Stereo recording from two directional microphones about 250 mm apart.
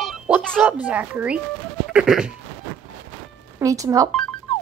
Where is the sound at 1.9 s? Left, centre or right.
Centre.